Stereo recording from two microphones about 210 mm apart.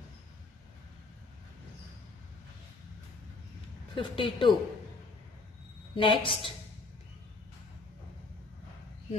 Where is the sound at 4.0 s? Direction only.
25° left (ahead or behind).